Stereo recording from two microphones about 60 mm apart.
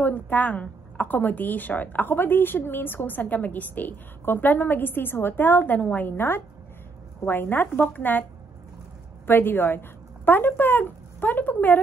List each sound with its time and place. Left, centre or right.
0.0 s a woman's voice: left
5.8 s a woman's voice: left
6.0 s a woman's voice: left